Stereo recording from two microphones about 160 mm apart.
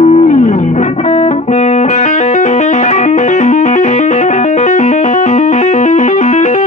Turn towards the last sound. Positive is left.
turn(degrees=50)  # may be behind; listen again after turning